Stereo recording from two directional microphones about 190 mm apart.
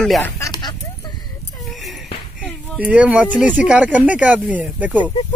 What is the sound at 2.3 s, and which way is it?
Speech, 5° right (ahead or behind).